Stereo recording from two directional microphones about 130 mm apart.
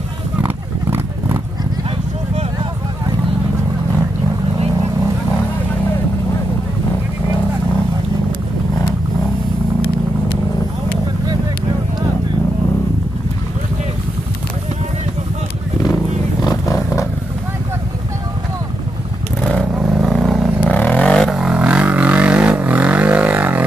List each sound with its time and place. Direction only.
0.4 s wild animals: 15° right (ahead or behind)
15.8 s vehicle: 30° left (ahead or behind)
19.6 s vehicle: 5° right (ahead or behind)
20.6 s vehicle: 10° left (ahead or behind)
21.3 s vehicle: 5° right (ahead or behind)